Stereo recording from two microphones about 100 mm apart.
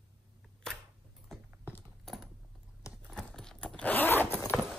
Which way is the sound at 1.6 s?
20° left (ahead or behind).